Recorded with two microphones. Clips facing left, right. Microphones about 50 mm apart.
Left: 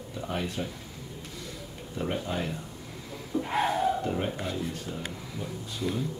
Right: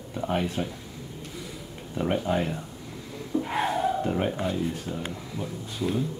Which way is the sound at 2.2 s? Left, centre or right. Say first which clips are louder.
Right 6 dB; right.